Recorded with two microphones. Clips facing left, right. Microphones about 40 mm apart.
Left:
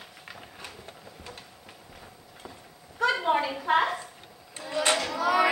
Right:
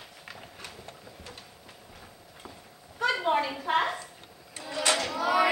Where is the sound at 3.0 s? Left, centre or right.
Centre.